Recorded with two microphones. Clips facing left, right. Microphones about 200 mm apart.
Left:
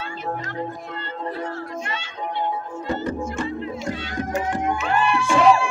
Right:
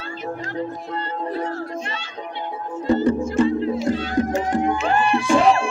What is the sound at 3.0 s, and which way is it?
Music, 35° right (ahead or behind).